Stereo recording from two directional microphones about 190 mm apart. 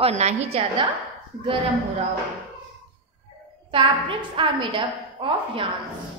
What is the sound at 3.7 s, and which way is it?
A woman's voice, 25° right (ahead or behind).